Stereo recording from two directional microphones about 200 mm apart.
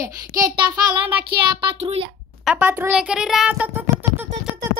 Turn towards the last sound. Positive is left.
turn(degrees=-10)  # may be behind; listen again after turning